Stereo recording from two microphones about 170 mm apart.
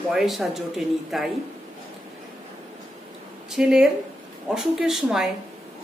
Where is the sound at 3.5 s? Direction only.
5° right (ahead or behind).